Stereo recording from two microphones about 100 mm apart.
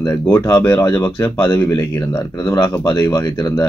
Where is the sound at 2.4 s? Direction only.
35° left (ahead or behind).